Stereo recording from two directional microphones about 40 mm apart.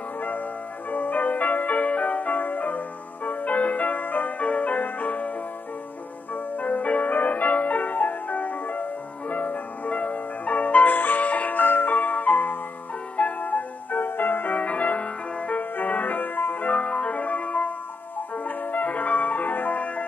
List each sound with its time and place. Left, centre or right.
0.9 s music: left
6.3 s music: left
14.0 s music: left
14.6 s music: left
16.6 s music: left